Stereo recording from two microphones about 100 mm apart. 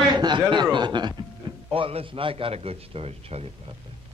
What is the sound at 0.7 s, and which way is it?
Speech, 50° right (ahead or behind).